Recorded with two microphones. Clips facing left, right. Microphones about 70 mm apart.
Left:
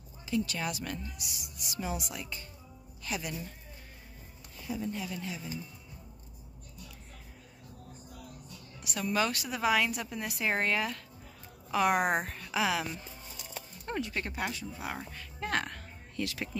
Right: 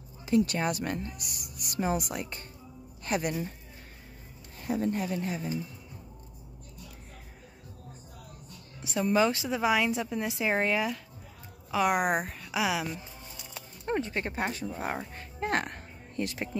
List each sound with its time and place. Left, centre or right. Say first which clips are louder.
0.5 s speech: right 6 dB; right
4.6 s speech: right 6 dB; right
8.8 s a woman's voice: right 6 dB; right; by 13.0 s centre
13.8 s speech: right 5 dB; right
15.0 s music: right 4 dB; right